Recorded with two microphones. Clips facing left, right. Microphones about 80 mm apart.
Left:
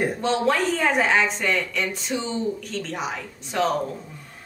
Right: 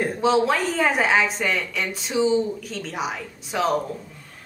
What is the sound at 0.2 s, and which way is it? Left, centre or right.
A woman's voice, centre.